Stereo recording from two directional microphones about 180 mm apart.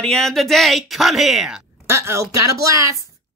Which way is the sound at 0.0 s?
Centre (ahead or behind).